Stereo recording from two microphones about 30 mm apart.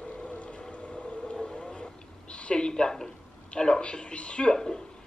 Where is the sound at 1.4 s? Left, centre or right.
Left.